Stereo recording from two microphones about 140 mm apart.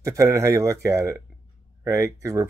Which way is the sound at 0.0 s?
25° right (ahead or behind).